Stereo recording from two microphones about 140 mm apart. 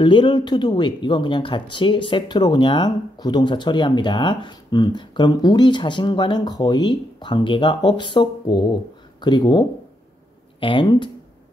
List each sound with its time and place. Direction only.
0.0 s speech: 35° left (ahead or behind)